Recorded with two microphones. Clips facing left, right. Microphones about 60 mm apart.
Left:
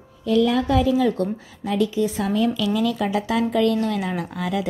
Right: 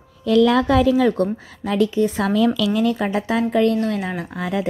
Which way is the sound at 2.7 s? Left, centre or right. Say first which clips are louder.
Right 2 dB; right.